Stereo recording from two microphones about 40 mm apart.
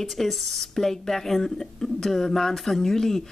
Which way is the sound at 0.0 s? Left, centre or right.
Centre.